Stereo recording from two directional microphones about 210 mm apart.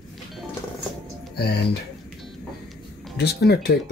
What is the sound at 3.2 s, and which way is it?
Speech, 50° left (ahead or behind).